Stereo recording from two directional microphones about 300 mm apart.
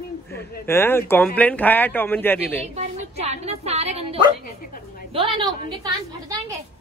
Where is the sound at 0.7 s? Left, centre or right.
Centre.